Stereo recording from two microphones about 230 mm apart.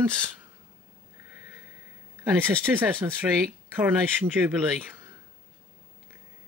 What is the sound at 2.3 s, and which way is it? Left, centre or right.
Speech, centre.